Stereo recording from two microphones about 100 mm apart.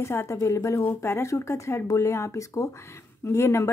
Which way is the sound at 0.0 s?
25° left (ahead or behind).